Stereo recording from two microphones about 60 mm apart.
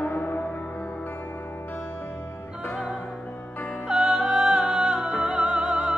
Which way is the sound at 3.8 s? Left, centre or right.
Centre.